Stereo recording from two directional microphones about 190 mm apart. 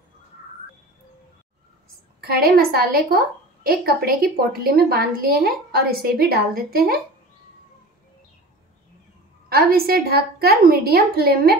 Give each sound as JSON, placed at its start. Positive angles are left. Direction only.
{"t": 2.2, "sound": "a woman's voice", "side_deg": -55}
{"t": 9.5, "sound": "a woman's voice", "side_deg": -55}